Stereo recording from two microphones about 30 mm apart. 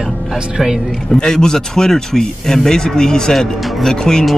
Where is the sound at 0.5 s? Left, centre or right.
Right.